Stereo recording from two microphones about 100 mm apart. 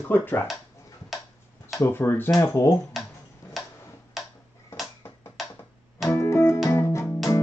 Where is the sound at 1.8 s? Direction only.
20° left (ahead or behind).